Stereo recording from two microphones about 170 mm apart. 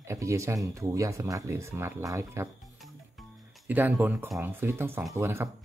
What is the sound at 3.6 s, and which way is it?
Speech, 10° right (ahead or behind).